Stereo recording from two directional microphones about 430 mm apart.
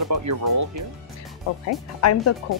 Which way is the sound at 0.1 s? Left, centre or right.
Right.